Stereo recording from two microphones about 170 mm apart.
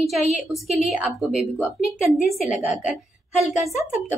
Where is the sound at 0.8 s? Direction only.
Centre (ahead or behind).